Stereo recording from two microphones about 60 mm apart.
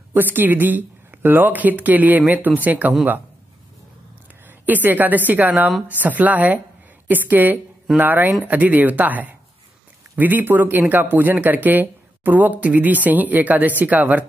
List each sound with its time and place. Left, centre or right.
0.1 s a woman's voice: right
4.5 s a woman's voice: right